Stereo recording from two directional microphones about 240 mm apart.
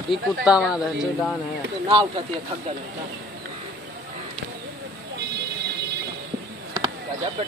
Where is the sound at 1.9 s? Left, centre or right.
Centre.